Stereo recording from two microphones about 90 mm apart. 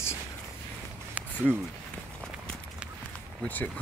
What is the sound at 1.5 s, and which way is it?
Speech, 15° left (ahead or behind).